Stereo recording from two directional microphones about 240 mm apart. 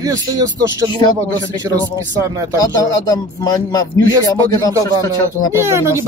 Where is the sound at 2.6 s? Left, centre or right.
Centre.